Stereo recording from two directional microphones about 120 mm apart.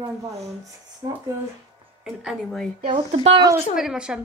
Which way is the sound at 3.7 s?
5° right (ahead or behind).